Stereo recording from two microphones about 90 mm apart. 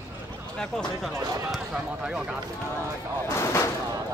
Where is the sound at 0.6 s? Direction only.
5° left (ahead or behind).